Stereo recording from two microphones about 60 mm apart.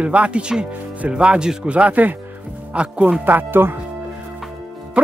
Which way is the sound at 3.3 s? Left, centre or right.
Right.